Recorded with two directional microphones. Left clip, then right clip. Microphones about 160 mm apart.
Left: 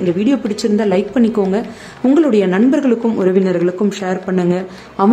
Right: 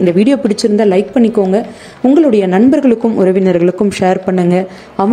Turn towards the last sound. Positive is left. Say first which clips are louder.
# right 1 dB
turn(degrees=-30)  # may be behind; listen again after turning